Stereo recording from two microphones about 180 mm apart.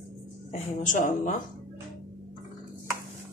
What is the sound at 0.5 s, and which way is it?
Speech, 45° left (ahead or behind).